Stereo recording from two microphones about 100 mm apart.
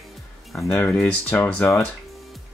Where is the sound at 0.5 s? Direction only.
20° left (ahead or behind).